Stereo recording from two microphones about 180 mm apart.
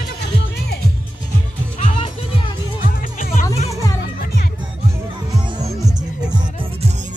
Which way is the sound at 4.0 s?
60° left (ahead or behind).